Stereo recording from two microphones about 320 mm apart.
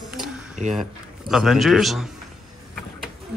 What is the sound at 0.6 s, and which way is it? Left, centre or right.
Speech, right.